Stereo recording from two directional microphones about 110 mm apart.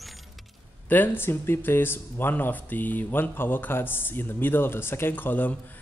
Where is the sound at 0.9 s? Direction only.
20° left (ahead or behind).